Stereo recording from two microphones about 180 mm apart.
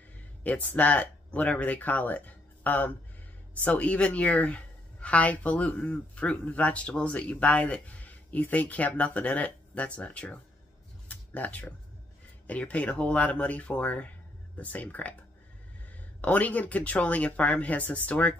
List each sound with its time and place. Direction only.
0.4 s a woman's voice: 10° left (ahead or behind)
11.1 s a sound: 10° left (ahead or behind)
12.4 s a woman's voice: 10° left (ahead or behind)
16.2 s a woman's voice: 10° left (ahead or behind)